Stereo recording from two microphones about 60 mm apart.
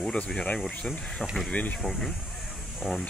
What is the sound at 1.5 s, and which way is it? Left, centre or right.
Speech, left.